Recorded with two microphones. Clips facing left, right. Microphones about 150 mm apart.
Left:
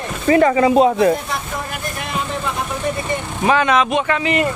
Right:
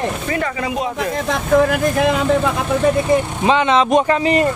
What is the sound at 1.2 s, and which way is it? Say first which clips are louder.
Speech: right 11 dB; 90° right.